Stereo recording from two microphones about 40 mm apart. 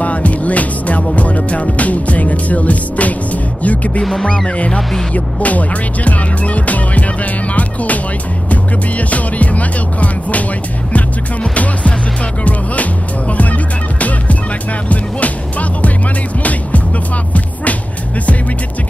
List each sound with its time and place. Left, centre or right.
0.0 s music: left
5.1 s music: left
11.5 s music: left
13.4 s music: left